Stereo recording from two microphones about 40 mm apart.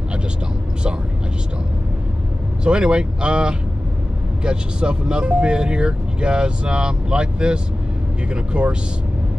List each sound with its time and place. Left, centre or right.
2.6 s speech: right